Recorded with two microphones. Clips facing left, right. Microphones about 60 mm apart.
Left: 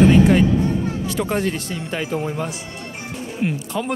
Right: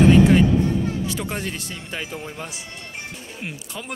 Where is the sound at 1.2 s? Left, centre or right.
Centre.